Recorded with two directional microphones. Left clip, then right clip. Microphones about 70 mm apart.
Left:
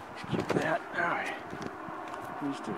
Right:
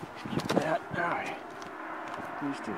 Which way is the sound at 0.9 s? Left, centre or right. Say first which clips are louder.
Left 1 dB; right.